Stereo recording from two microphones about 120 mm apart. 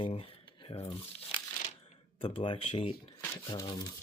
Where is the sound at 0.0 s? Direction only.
50° left (ahead or behind).